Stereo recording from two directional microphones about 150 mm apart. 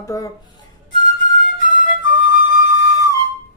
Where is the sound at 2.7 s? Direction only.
25° right (ahead or behind).